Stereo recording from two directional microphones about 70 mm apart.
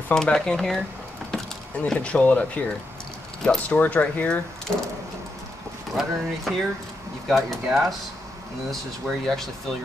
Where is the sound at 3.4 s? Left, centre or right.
Centre.